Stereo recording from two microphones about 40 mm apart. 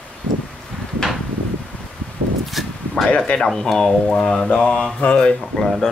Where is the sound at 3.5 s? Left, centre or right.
Centre.